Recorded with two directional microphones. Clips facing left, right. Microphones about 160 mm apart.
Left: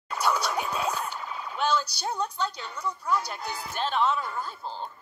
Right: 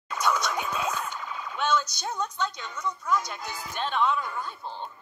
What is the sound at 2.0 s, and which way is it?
Speech, 10° left (ahead or behind).